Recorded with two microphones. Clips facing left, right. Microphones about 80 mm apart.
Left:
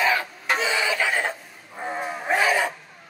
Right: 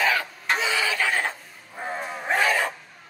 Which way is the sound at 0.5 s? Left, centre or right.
Left.